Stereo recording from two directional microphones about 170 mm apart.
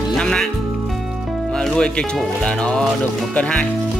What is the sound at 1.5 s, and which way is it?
Speech, 5° left (ahead or behind).